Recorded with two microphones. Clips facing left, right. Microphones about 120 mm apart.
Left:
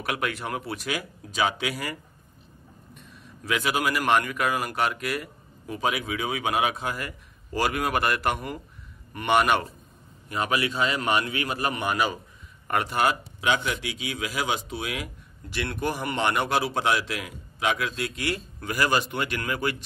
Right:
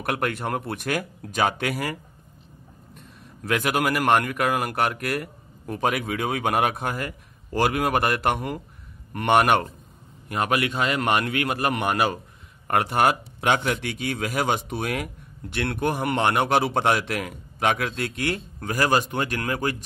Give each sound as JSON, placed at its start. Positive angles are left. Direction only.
{"t": 0.0, "sound": "speech", "side_deg": -55}
{"t": 3.4, "sound": "speech", "side_deg": -55}